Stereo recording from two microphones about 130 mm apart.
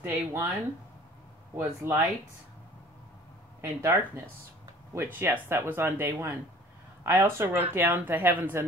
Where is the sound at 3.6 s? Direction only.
20° right (ahead or behind).